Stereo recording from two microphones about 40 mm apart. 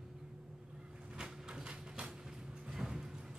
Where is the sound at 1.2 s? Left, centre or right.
Right.